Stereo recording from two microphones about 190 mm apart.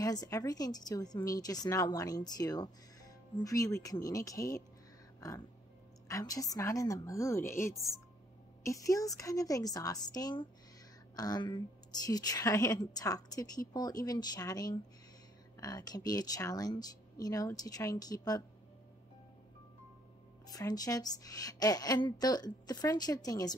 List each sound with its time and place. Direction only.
0.0 s speech: 20° left (ahead or behind)
6.0 s a woman's voice: 15° left (ahead or behind)
20.4 s speech: 20° left (ahead or behind)